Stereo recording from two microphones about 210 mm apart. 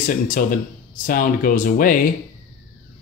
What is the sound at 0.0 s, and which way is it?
Speech, 40° left (ahead or behind).